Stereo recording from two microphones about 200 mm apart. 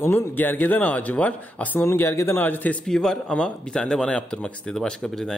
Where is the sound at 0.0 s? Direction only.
10° left (ahead or behind).